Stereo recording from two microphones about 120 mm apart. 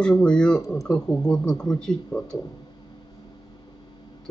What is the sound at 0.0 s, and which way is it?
Speech, 5° left (ahead or behind).